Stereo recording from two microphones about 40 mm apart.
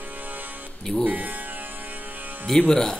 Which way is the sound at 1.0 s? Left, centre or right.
Right.